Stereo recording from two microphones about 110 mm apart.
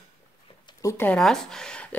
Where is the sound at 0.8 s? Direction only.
30° left (ahead or behind).